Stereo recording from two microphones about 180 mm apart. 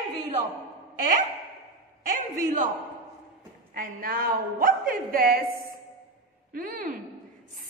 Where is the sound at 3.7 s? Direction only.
50° right (ahead or behind).